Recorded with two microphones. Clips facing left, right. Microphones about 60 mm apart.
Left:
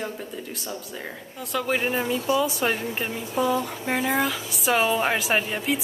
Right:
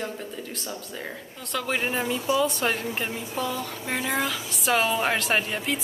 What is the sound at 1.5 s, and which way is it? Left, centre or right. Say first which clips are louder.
Speech: left 2 dB; centre.